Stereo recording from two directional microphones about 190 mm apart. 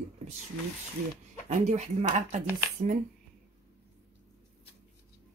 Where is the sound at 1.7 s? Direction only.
35° right (ahead or behind).